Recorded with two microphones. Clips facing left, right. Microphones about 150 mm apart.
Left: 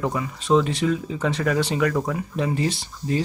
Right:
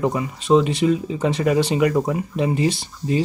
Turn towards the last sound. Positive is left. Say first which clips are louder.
# right 3 dB
turn(degrees=-15)  # may be behind; listen again after turning